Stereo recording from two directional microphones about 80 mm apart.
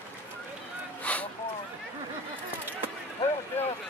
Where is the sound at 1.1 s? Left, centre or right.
Centre.